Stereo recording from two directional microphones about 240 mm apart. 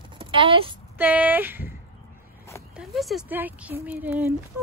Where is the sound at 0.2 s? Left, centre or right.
Right.